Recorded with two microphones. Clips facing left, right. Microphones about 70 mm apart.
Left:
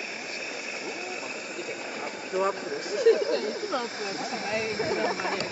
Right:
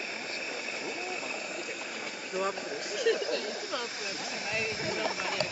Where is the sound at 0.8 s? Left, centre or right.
Centre.